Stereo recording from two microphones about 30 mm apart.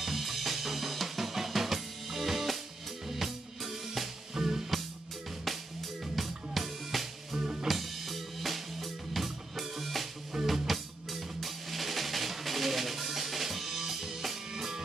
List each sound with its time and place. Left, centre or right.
0.0 s drum kit: centre
3.1 s music: centre
4.4 s music: centre
5.4 s music: centre
7.6 s drum kit: centre
10.3 s music: centre